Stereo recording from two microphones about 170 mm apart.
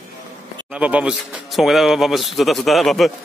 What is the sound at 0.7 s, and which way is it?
A man's voice, 5° right (ahead or behind).